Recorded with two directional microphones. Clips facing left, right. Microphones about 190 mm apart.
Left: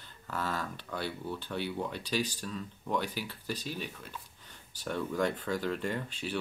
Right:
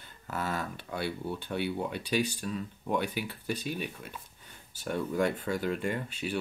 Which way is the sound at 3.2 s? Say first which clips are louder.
Right 3 dB; 55° right (ahead or behind).